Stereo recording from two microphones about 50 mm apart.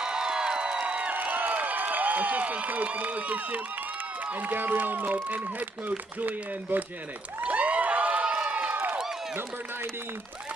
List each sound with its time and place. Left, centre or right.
0.0 s music: centre
1.1 s a sound: right
4.3 s speech: right
7.4 s cheering: right
8.1 s crowd: centre